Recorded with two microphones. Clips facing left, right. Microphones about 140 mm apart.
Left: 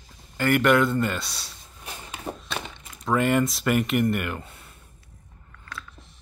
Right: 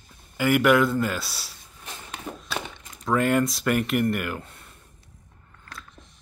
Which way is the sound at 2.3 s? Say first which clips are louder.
Left 3 dB; 35° left (ahead or behind).